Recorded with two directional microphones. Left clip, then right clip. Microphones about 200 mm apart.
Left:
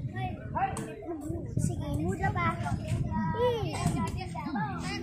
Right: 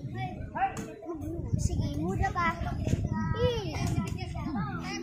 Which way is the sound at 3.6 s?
35° left (ahead or behind).